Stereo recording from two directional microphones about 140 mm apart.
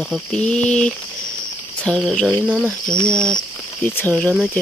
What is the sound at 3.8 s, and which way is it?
Speech, 10° left (ahead or behind).